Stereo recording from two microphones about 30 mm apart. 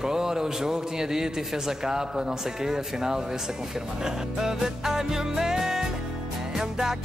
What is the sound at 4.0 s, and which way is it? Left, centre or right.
Music, centre.